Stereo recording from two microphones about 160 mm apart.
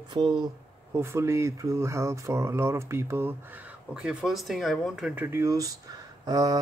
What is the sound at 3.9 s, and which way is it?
Speech, 5° right (ahead or behind).